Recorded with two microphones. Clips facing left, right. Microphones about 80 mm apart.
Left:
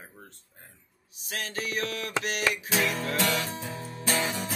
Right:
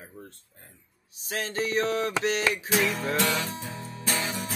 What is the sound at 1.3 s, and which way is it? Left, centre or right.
Mantra, right.